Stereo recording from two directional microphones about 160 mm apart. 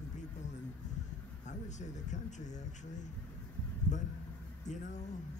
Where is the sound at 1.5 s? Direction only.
50° left (ahead or behind).